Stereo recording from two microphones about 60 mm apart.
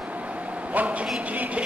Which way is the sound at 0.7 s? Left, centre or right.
Right.